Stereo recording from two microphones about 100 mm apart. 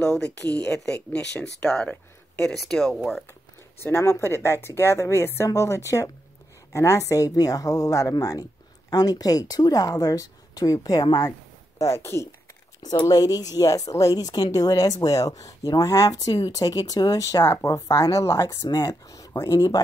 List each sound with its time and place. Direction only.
0.0 s speech: 10° left (ahead or behind)
3.8 s a woman's voice: 25° left (ahead or behind)
11.8 s a woman's voice: 25° left (ahead or behind)
13.0 s speech: 40° left (ahead or behind)
17.7 s speech: 35° left (ahead or behind)